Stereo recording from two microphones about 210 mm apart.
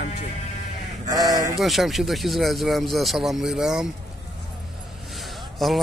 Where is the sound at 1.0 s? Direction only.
15° right (ahead or behind).